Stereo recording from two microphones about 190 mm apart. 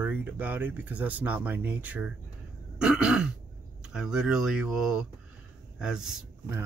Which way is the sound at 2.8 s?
5° right (ahead or behind).